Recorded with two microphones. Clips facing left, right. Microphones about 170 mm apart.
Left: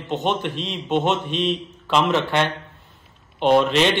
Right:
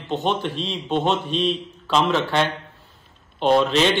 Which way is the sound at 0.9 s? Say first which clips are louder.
Left 1 dB; 20° left (ahead or behind).